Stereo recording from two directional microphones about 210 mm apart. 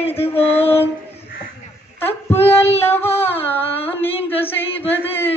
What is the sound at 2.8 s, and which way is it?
Carnatic music, 10° left (ahead or behind).